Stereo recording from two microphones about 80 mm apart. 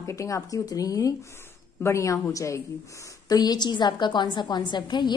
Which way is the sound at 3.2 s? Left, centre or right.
Left.